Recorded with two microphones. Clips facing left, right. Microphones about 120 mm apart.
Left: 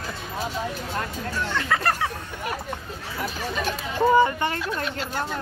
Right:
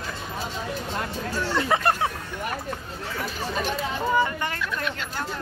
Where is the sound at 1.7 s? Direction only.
20° right (ahead or behind).